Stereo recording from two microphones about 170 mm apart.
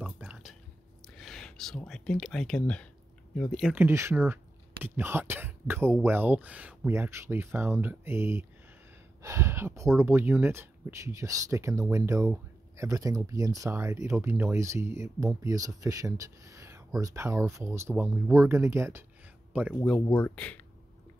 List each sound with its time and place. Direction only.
0.0 s drip: 5° right (ahead or behind)
1.1 s speech: centre (ahead or behind)
3.8 s speech: 15° right (ahead or behind)
19.8 s speech: 5° left (ahead or behind)